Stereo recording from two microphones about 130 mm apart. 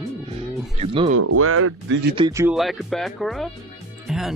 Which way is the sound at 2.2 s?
35° right (ahead or behind).